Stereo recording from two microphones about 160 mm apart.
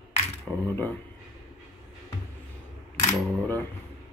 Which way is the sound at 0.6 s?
15° left (ahead or behind).